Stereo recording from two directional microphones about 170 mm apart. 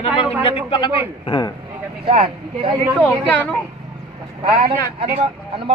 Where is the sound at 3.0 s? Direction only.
10° left (ahead or behind).